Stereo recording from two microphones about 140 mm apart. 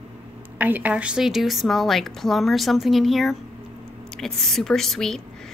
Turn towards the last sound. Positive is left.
turn(degrees=5)  # may be behind; listen again after turning